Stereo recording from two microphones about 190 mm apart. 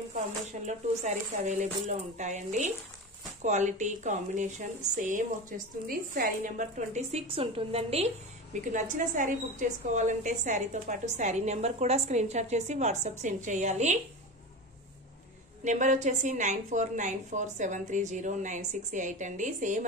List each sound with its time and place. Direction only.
0.5 s a woman's voice: 40° right (ahead or behind)
15.6 s a woman's voice: 40° right (ahead or behind)